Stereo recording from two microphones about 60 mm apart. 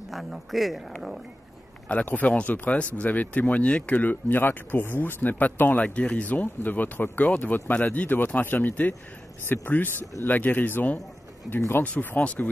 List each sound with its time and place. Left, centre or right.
0.1 s speech: centre
2.0 s speech: left